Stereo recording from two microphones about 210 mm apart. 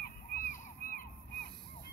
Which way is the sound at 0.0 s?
40° left (ahead or behind).